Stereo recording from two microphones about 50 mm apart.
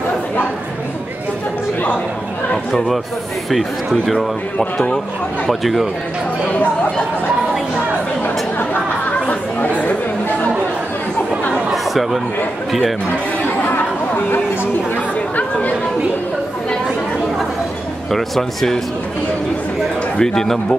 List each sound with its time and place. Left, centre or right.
3.4 s speech: centre
5.5 s speech: centre
9.2 s chatter: left
11.7 s chatter: centre
13.7 s chatter: left
18.1 s speech: centre
20.2 s a man's voice: centre